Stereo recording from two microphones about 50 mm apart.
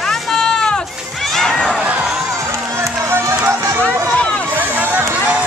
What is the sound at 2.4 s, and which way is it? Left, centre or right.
Run, right.